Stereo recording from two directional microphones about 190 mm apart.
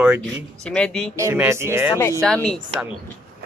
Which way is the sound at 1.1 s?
15° right (ahead or behind).